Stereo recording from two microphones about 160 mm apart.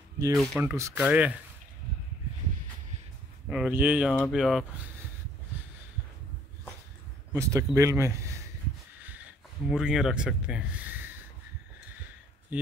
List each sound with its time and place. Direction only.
0.2 s speech: 20° right (ahead or behind)
3.4 s speech: 5° right (ahead or behind)
4.1 s speech: 5° left (ahead or behind)
7.3 s speech: 20° right (ahead or behind)
9.0 s a sound: 10° right (ahead or behind)